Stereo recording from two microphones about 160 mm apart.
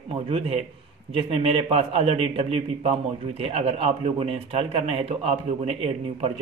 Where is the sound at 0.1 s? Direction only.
35° right (ahead or behind).